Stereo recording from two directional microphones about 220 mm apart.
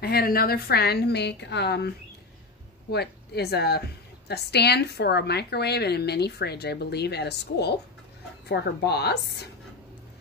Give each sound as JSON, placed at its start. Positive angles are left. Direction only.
{"t": 0.0, "sound": "a woman's voice", "side_deg": 45}
{"t": 2.9, "sound": "a woman's voice", "side_deg": 45}